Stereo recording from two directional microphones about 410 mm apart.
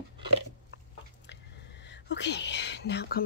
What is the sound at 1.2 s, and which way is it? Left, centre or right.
Speech, left.